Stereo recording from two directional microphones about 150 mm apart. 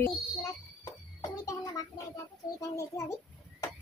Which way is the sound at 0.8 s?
25° left (ahead or behind).